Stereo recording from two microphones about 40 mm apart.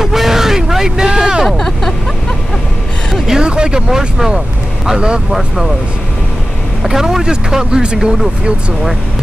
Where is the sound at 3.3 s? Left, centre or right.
Right.